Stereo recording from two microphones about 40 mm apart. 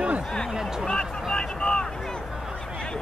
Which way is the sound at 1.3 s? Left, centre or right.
Left.